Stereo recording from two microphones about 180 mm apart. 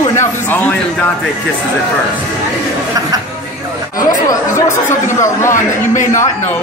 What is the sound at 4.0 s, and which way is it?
Speech, 20° left (ahead or behind).